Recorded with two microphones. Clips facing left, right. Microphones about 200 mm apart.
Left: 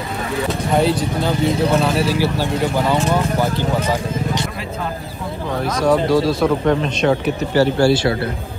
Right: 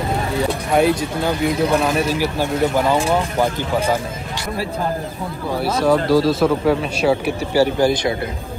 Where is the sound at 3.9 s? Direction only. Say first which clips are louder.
Left 4 dB; 20° left (ahead or behind).